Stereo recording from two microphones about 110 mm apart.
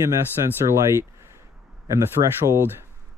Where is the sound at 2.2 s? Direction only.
80° right.